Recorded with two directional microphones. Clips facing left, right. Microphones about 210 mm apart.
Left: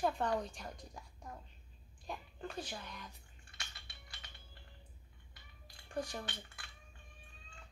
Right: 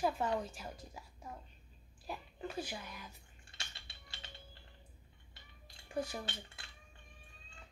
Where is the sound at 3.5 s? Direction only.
25° right (ahead or behind).